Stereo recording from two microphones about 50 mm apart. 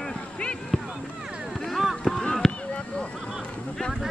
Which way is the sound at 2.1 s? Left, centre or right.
Centre.